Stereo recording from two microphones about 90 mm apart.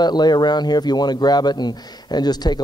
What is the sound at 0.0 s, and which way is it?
Speech, 50° left (ahead or behind).